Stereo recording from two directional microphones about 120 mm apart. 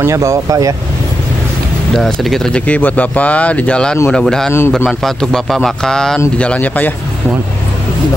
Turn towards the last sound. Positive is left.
turn(degrees=10)  # may be behind; listen again after turning